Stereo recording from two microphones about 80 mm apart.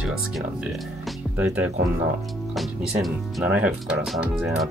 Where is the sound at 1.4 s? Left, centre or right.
Right.